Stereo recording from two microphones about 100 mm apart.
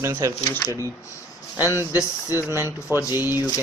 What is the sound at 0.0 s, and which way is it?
Speech, 30° right (ahead or behind).